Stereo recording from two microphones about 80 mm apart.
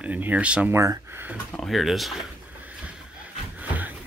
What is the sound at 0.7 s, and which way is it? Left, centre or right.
Speech, right.